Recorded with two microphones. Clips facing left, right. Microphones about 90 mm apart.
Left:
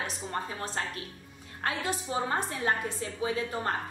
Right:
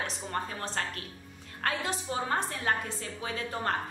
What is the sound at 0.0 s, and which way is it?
A woman's voice, 15° left (ahead or behind).